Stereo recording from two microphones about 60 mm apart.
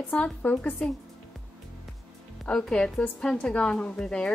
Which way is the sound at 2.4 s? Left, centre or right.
Centre.